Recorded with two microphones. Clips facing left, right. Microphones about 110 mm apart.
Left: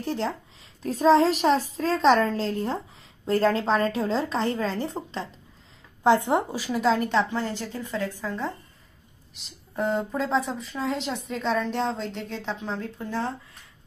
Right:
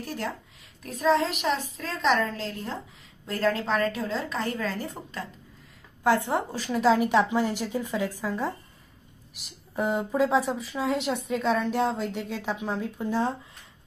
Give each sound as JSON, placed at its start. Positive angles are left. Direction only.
{"t": 0.0, "sound": "a woman's voice", "side_deg": 25}
{"t": 6.6, "sound": "a woman's voice", "side_deg": 0}